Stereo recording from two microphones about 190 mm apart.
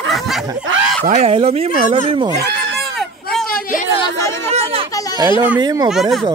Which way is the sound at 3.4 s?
50° left (ahead or behind).